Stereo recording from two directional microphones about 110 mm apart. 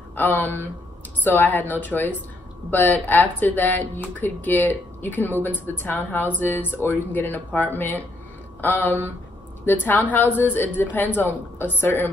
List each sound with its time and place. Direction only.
0.1 s a woman's voice: 20° left (ahead or behind)